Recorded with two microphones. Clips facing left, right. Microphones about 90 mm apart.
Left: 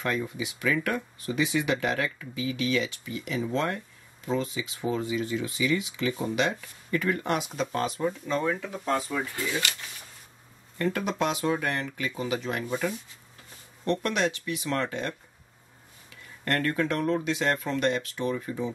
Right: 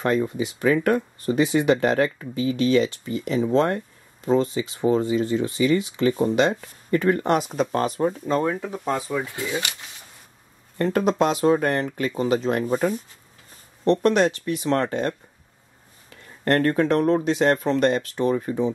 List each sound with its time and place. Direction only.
0.0 s speech: 40° right (ahead or behind)
8.8 s speech: 15° right (ahead or behind)
10.8 s speech: 40° right (ahead or behind)